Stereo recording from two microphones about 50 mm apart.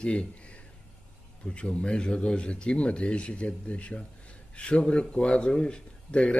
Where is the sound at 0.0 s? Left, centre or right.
Left.